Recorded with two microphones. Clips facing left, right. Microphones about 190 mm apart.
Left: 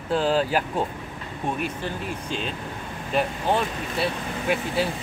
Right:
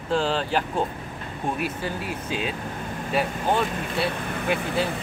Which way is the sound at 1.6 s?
5° right (ahead or behind).